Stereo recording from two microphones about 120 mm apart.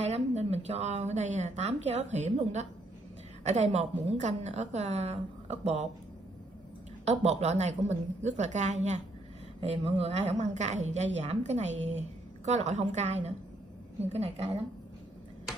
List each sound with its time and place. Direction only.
0.0 s a woman's voice: 65° right (ahead or behind)
7.1 s a woman's voice: 70° right (ahead or behind)
9.6 s a woman's voice: 60° right (ahead or behind)
14.0 s a woman's voice: 60° right (ahead or behind)